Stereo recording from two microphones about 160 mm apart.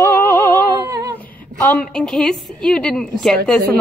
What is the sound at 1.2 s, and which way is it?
A woman's voice, 10° left (ahead or behind).